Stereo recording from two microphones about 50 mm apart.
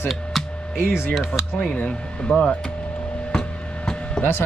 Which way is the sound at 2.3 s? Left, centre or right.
Left.